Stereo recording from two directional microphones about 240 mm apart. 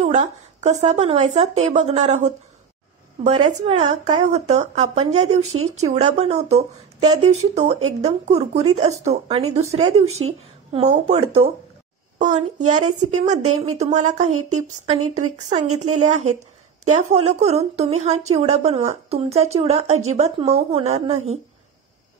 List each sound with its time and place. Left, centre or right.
0.0 s speech: right
5.4 s speech: right
5.8 s speech: right
10.0 s speech: right
10.7 s a child's voice: right
15.0 s a woman's voice: right
15.3 s speech: right
17.1 s speech: right